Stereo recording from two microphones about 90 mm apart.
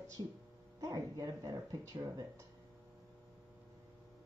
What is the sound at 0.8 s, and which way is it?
Speech, 40° right (ahead or behind).